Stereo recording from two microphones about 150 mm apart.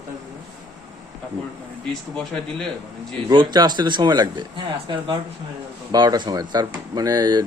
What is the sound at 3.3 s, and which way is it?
Speech, 30° right (ahead or behind).